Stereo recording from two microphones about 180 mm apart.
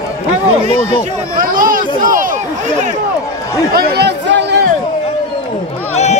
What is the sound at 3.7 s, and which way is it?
Speech, 65° right (ahead or behind).